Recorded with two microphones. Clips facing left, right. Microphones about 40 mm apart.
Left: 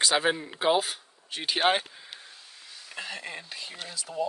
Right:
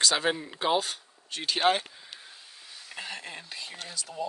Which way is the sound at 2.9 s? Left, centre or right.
Centre.